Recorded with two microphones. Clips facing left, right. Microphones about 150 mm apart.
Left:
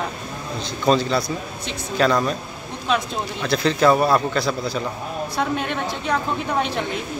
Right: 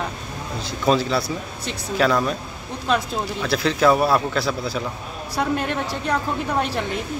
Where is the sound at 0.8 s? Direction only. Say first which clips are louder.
Left 1 dB; 5° right (ahead or behind).